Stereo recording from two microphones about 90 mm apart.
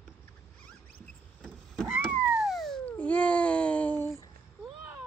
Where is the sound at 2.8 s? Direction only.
15° left (ahead or behind).